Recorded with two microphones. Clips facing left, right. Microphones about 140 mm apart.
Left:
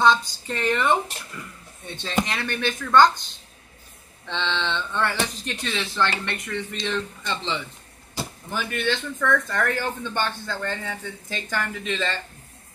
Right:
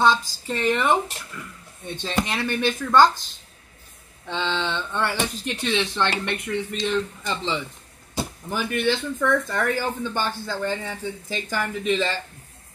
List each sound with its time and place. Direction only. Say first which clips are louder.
0.0 s speech: even; 5° right (ahead or behind)
2.2 s speech: right 3 dB; 10° right (ahead or behind)
4.3 s speech: right 1 dB; 10° right (ahead or behind)